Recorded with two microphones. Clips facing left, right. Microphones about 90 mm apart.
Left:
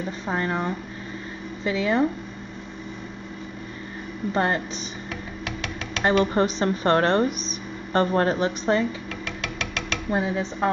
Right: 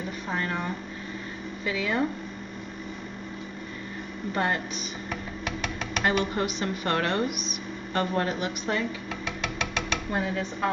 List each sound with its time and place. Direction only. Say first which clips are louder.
0.3 s speech: left 5 dB; 25° left (ahead or behind)
4.3 s a woman's voice: left 4 dB; 30° left (ahead or behind)
5.4 s music: even; 15° right (ahead or behind)
6.3 s a woman's voice: left 7 dB; 35° left (ahead or behind)
9.4 s music: right 2 dB; 10° right (ahead or behind)
10.1 s speech: left 6 dB; 25° left (ahead or behind)